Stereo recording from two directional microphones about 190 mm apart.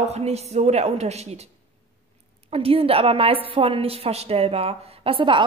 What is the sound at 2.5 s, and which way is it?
A woman's voice, 30° right (ahead or behind).